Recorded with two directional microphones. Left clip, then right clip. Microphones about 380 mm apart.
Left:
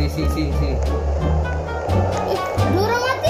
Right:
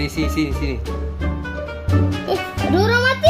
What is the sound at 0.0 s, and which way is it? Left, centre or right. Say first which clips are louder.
Speech: right 2 dB; centre.